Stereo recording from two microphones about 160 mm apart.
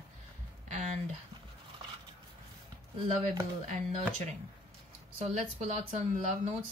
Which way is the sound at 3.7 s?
45° right (ahead or behind).